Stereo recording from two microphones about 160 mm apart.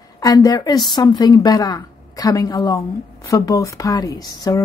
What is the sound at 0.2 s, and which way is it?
A woman's voice, 20° left (ahead or behind).